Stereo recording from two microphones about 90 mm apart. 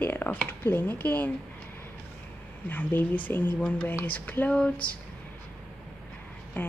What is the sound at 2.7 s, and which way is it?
A woman's voice, 20° left (ahead or behind).